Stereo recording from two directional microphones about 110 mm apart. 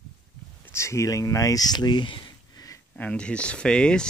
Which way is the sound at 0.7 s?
25° left (ahead or behind).